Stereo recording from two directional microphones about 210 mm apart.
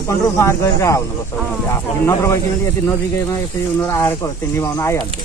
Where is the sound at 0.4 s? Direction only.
15° left (ahead or behind).